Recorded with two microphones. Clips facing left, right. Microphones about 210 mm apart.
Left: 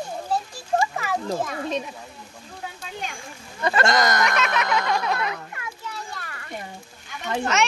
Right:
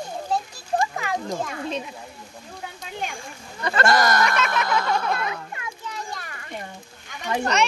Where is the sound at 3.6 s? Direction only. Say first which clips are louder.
Even; 20° left (ahead or behind).